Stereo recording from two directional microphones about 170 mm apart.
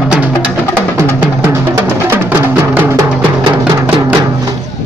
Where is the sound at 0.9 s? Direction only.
15° right (ahead or behind).